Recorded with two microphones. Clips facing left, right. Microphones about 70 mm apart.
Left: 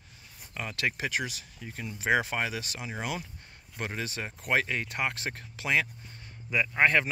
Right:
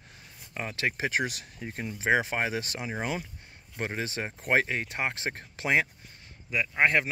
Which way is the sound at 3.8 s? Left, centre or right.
Right.